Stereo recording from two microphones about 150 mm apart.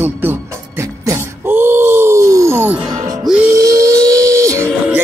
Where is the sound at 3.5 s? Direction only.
20° right (ahead or behind).